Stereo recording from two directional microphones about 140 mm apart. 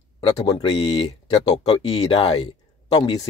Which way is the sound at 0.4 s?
30° left (ahead or behind).